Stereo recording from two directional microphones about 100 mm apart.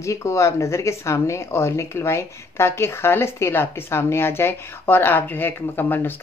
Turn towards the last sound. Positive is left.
turn(degrees=20)  # may be behind; listen again after turning